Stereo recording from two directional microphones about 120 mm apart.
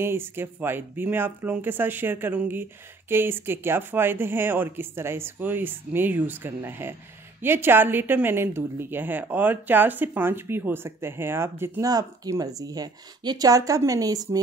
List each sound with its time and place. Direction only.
0.0 s speech: 20° right (ahead or behind)
11.8 s speech: 30° right (ahead or behind)